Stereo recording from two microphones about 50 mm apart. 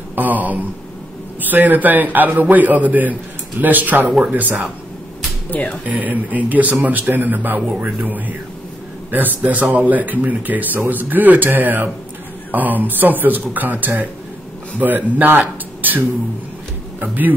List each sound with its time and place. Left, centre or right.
0.1 s a man's voice: right
5.5 s speech: left
5.9 s a man's voice: right
17.0 s a man's voice: right